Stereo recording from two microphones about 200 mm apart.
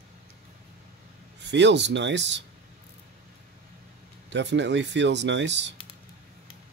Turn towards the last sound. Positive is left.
turn(degrees=-60)  # may be behind; listen again after turning